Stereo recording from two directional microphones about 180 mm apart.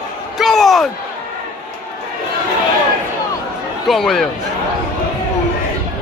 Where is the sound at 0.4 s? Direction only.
Centre (ahead or behind).